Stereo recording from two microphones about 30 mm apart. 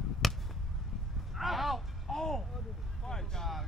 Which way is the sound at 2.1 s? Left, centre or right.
Centre.